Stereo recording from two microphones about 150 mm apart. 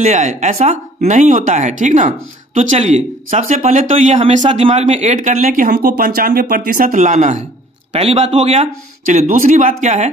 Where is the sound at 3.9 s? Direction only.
45° right (ahead or behind).